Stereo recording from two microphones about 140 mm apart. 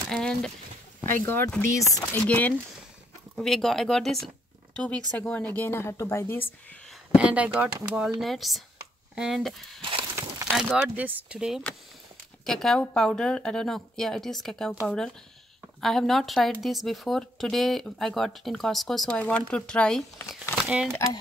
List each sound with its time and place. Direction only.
0.1 s speech: 5° left (ahead or behind)
1.0 s speech: 15° left (ahead or behind)
2.2 s speech: 10° left (ahead or behind)
7.2 s speech: 10° right (ahead or behind)
9.8 s a sound: 40° right (ahead or behind)
10.5 s speech: 5° right (ahead or behind)
15.8 s speech: centre (ahead or behind)
20.6 s speech: 5° right (ahead or behind)